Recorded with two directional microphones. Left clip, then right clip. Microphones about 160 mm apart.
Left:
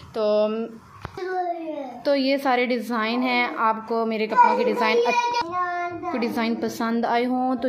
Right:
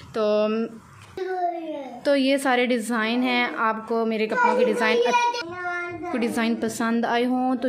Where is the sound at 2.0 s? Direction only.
25° right (ahead or behind).